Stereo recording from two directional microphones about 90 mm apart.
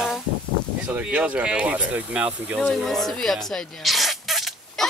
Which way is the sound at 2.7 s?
Centre (ahead or behind).